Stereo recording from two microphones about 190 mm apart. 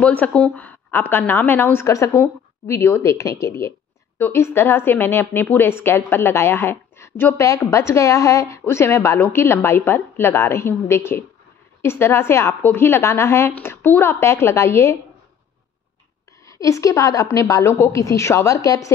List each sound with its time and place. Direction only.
0.0 s a woman's voice: 5° left (ahead or behind)
16.4 s a woman's voice: 15° left (ahead or behind)